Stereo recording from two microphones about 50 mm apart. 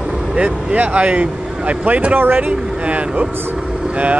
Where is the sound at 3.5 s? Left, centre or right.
Centre.